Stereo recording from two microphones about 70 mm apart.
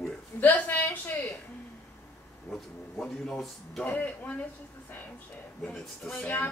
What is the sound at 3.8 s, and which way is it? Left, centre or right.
Speech, left.